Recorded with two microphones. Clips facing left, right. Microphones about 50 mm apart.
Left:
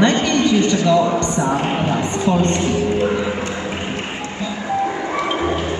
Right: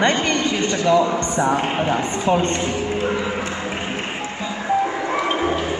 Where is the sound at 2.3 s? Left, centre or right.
Right.